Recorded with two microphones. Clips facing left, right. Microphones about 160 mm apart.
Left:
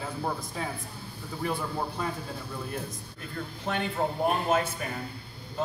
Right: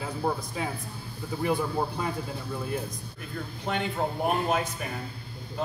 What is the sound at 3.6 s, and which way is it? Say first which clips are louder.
Speech: right 1 dB; 15° right (ahead or behind).